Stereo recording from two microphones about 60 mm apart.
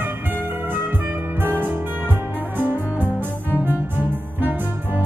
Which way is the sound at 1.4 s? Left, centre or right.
Right.